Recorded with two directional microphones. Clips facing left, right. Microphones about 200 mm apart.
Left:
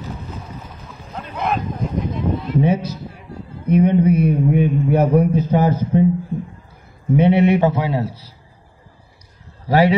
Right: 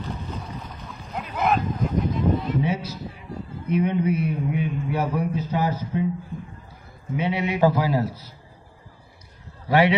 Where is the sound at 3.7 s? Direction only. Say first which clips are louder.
Left 8 dB; 45° left (ahead or behind).